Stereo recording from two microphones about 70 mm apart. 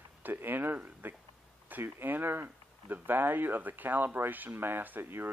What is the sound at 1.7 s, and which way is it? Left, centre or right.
Speech, right.